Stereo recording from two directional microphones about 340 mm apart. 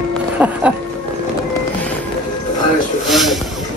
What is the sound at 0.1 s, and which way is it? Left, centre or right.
Music, centre.